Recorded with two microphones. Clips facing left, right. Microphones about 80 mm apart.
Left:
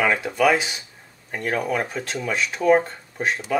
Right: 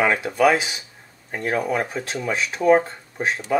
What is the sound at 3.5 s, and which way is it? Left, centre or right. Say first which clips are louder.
Speech: right 2 dB; centre.